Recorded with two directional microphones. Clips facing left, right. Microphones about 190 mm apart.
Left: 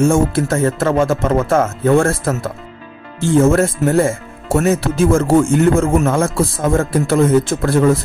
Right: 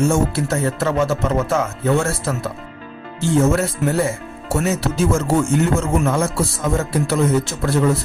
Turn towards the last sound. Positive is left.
turn(degrees=50)  # may be behind; listen again after turning